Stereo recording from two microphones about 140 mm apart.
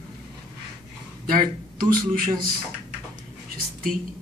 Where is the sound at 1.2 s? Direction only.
85° right.